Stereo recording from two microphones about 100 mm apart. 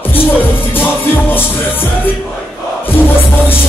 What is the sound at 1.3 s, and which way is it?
Music, 20° left (ahead or behind).